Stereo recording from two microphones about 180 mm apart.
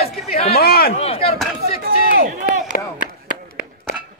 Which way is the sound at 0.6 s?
60° left (ahead or behind).